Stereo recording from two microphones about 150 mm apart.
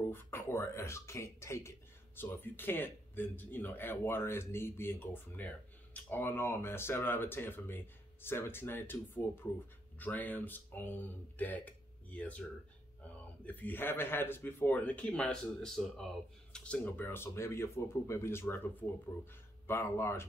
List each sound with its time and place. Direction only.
0.1 s speech: 15° left (ahead or behind)
13.5 s speech: 10° left (ahead or behind)